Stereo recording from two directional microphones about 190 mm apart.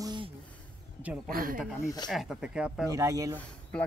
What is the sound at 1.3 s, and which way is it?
Speech, 50° right (ahead or behind).